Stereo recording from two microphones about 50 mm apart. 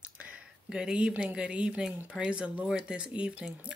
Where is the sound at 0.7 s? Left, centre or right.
Centre.